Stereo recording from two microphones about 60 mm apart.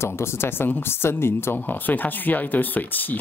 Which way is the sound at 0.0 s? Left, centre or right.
Left.